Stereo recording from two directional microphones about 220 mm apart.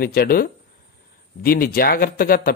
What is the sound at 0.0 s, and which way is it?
Speech, 45° left (ahead or behind).